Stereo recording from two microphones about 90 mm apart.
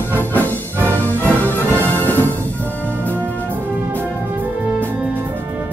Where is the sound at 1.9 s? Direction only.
20° left (ahead or behind).